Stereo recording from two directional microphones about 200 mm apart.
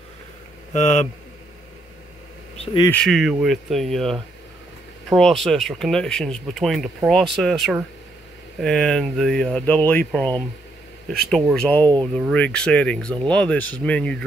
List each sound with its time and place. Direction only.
0.7 s a man's voice: 35° left (ahead or behind)
2.5 s bee: 30° left (ahead or behind)
2.8 s speech: 5° left (ahead or behind)
5.1 s speech: centre (ahead or behind)